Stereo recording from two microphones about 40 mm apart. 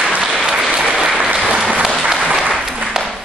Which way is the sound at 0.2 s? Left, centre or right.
Centre.